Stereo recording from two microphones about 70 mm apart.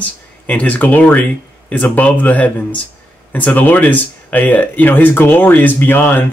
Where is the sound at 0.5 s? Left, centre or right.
Left.